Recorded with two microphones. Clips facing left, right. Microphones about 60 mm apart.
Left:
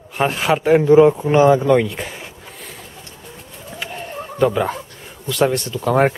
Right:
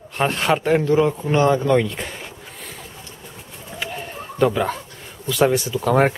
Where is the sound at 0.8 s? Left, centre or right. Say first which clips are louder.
Left 7 dB; centre.